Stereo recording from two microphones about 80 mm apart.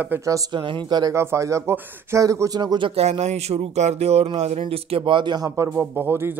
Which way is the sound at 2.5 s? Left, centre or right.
Right.